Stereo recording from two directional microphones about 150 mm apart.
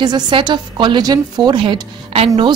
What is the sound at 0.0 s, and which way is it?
A woman's voice, 30° right (ahead or behind).